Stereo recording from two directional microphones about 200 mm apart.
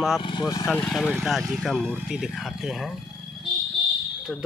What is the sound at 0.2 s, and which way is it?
Speech, 20° left (ahead or behind).